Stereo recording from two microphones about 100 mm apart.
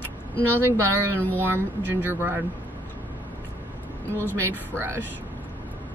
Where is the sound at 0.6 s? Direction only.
25° right (ahead or behind).